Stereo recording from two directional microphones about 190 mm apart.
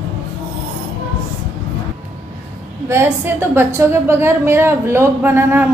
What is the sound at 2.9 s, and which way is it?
A woman's voice, 15° right (ahead or behind).